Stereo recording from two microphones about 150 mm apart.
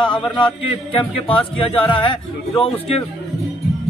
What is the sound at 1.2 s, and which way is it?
Speech, 35° left (ahead or behind).